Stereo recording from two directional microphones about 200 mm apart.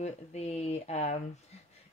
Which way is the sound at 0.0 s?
35° left (ahead or behind).